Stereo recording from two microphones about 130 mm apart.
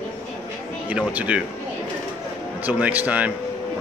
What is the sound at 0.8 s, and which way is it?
Speech, 10° right (ahead or behind).